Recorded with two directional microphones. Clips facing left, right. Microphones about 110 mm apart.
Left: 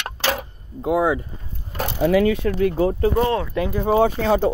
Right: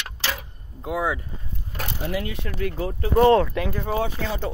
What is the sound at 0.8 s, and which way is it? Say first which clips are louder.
Speech: left 7 dB; 25° left (ahead or behind).